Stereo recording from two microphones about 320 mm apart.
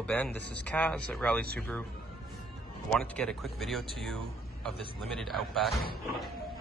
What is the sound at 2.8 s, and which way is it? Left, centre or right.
Speech, centre.